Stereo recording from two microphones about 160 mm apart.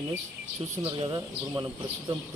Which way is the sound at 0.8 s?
15° right (ahead or behind).